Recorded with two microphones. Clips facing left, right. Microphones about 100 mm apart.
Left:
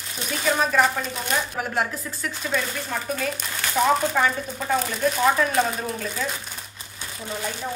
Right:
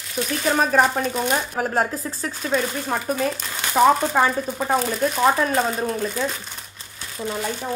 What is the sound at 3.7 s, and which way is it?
Speech, 35° right (ahead or behind).